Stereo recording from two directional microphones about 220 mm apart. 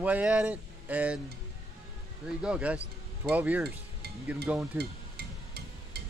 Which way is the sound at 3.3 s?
5° right (ahead or behind).